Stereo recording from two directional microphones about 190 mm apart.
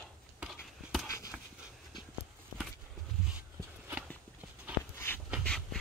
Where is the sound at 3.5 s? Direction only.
15° right (ahead or behind).